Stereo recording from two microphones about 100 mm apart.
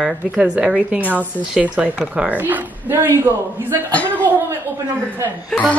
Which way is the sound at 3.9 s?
15° left (ahead or behind).